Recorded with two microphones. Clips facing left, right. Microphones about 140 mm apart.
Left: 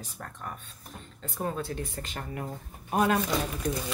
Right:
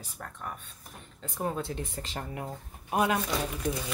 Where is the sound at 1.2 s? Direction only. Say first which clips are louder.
Even; 20° right (ahead or behind).